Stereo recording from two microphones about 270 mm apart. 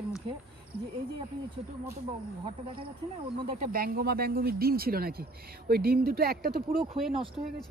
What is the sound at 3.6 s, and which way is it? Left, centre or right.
Speech, right.